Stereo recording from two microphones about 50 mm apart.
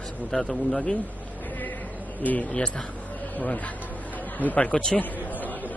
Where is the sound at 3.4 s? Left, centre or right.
Left.